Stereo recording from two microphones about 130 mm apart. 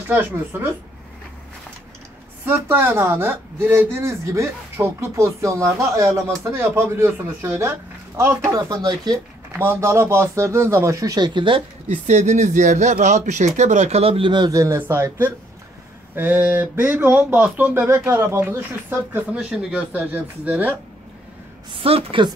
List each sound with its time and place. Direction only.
0.1 s speech: 20° right (ahead or behind)
2.4 s speech: 15° right (ahead or behind)
9.5 s speech: 15° right (ahead or behind); by 11.6 s 40° right (ahead or behind)
11.9 s speech: 70° right (ahead or behind); by 14.6 s 35° right (ahead or behind)
14.6 s speech: 20° right (ahead or behind)
21.7 s speech: 45° right (ahead or behind)